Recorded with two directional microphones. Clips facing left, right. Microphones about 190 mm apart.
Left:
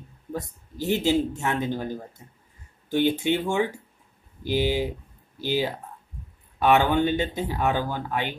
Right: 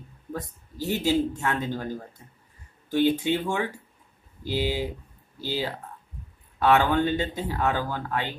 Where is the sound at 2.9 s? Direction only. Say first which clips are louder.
Even; 20° left (ahead or behind).